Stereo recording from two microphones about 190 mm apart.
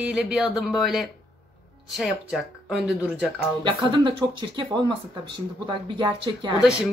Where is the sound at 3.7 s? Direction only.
25° right (ahead or behind).